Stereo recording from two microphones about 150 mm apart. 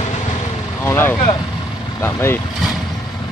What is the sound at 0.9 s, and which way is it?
Vehicle, 15° left (ahead or behind).